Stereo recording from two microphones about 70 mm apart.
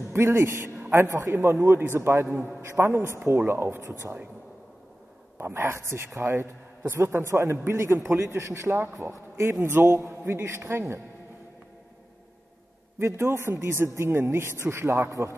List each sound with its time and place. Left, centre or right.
0.1 s a man's voice: right
5.4 s a man's voice: right
13.0 s a man's voice: right